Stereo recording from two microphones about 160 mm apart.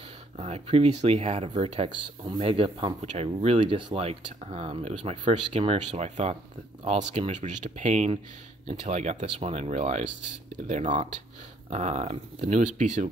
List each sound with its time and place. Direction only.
0.4 s speech: 40° right (ahead or behind)
5.0 s speech: 30° right (ahead or behind)
5.5 s speech: 40° right (ahead or behind)